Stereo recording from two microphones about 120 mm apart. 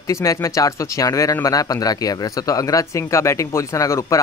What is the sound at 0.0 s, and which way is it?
Speech, 25° left (ahead or behind).